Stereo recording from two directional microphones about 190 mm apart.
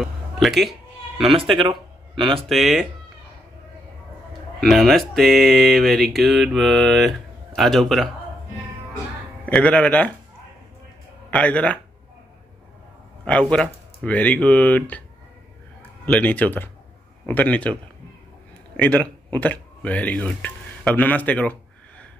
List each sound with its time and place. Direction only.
0.0 s a sound: centre (ahead or behind)
1.3 s speech: 25° right (ahead or behind)
2.4 s speech: centre (ahead or behind)
4.6 s speech: centre (ahead or behind)
9.5 s speech: 5° left (ahead or behind)
11.2 s speech: 5° left (ahead or behind)
13.2 s speech: 5° left (ahead or behind)
16.1 s speech: 5° left (ahead or behind)
18.8 s speech: 5° left (ahead or behind)